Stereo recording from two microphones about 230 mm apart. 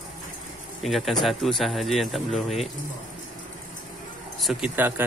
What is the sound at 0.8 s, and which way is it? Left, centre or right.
Speech, centre.